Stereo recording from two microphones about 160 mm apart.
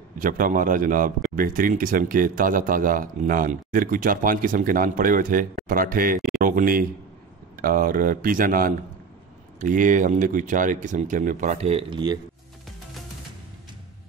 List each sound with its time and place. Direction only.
0.2 s a man's voice: 60° right (ahead or behind); by 12.2 s 30° right (ahead or behind)